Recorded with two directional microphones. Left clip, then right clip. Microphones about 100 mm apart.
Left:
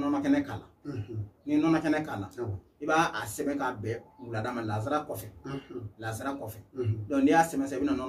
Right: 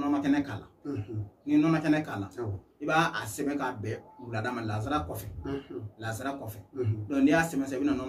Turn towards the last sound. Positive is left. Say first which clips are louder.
# even
turn(degrees=-10)  # may be behind; listen again after turning